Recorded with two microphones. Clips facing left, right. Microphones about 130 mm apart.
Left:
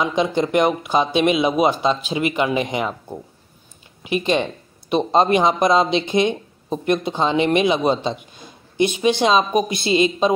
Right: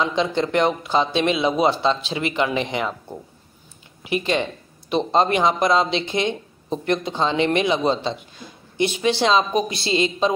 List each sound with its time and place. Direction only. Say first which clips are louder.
0.0 s speech: left 2 dB; 15° left (ahead or behind)